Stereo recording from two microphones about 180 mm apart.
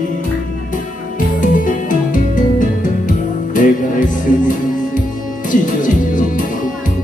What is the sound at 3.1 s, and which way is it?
Music, 45° left (ahead or behind).